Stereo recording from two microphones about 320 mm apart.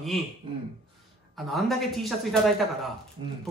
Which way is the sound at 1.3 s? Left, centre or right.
Centre.